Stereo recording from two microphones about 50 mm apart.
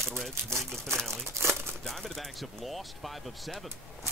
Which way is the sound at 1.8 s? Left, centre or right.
Centre.